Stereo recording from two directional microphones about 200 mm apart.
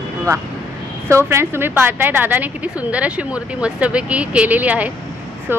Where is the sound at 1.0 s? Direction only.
15° right (ahead or behind).